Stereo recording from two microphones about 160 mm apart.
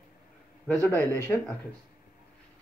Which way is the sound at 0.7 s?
15° left (ahead or behind).